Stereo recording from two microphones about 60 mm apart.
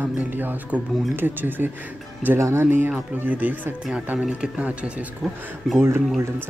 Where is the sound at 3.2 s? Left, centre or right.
Right.